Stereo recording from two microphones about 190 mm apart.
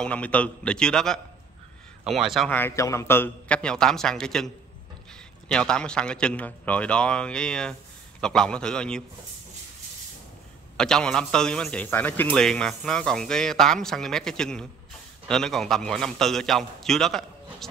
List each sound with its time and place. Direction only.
0.0 s a man's voice: 5° left (ahead or behind)
5.5 s a man's voice: 5° left (ahead or behind)
10.8 s a man's voice: 5° left (ahead or behind)